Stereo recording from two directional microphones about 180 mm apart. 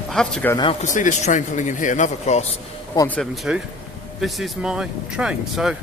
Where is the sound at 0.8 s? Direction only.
45° left (ahead or behind).